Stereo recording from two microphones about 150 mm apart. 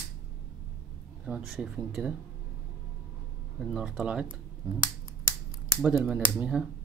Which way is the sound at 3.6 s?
5° right (ahead or behind).